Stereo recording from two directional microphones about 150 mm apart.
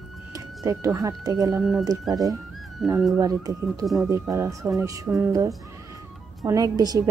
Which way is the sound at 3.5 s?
25° right (ahead or behind).